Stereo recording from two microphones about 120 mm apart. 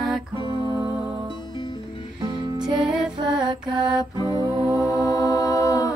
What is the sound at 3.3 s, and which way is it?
Mantra, 35° right (ahead or behind).